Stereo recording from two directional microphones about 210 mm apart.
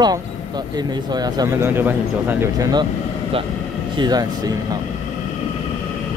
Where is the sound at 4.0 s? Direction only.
20° right (ahead or behind).